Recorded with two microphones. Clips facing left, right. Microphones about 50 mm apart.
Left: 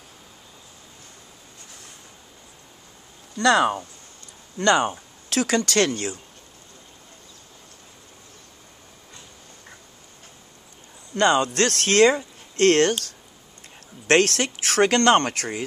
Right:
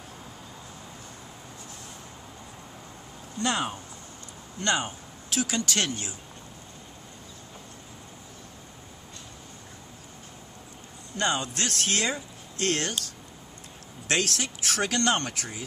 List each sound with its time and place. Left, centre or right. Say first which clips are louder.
3.3 s speech: left 10 dB; left
4.6 s a sound: left 8 dB; left
5.4 s speech: left 8 dB; left
11.1 s speech: left 9 dB; left
14.0 s speech: left 9 dB; left